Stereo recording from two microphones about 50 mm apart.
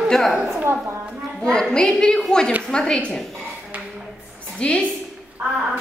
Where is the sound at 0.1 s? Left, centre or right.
Centre.